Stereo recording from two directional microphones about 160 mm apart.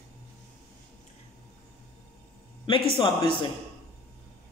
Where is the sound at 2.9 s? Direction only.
30° left (ahead or behind).